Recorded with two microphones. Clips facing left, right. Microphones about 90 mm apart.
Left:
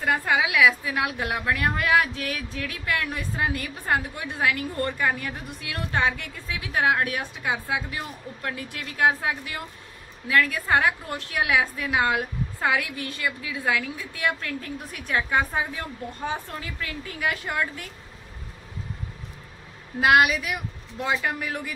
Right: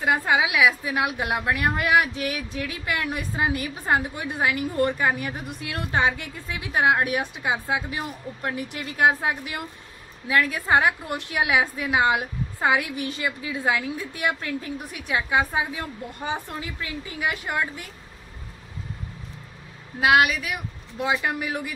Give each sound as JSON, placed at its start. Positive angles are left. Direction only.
{"t": 0.0, "sound": "a woman's voice", "side_deg": -15}
{"t": 20.0, "sound": "speech", "side_deg": 0}
{"t": 21.0, "sound": "a woman's voice", "side_deg": -10}